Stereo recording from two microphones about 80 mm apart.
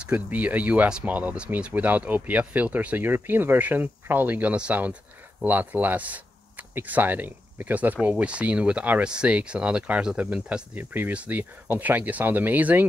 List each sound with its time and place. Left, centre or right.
0.0 s speech: centre